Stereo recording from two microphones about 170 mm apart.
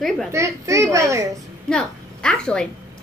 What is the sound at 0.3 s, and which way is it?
A child's voice, 15° right (ahead or behind).